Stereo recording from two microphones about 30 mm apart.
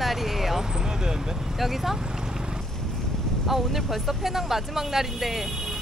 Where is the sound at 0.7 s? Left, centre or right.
Right.